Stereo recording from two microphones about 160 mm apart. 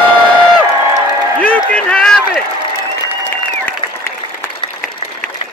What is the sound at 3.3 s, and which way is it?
Applause, 15° left (ahead or behind).